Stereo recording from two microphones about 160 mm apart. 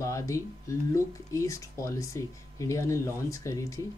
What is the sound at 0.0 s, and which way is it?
Speech, 20° left (ahead or behind).